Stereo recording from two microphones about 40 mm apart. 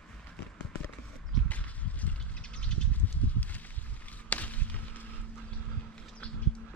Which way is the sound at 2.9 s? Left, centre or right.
Left.